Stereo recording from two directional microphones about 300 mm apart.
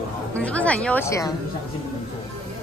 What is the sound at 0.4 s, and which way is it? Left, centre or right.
Speech, centre.